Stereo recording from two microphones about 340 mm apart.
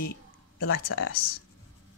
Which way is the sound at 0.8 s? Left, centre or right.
Left.